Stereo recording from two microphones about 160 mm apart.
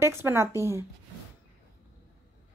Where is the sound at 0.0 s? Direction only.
15° right (ahead or behind).